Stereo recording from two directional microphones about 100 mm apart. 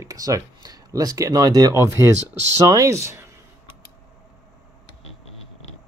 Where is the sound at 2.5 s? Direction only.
30° right (ahead or behind).